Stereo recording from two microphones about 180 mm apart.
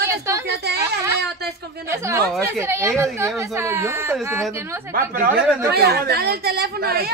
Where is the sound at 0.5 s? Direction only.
65° right (ahead or behind).